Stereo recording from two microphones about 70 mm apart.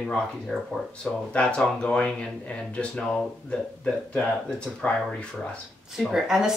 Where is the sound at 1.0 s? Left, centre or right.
Centre.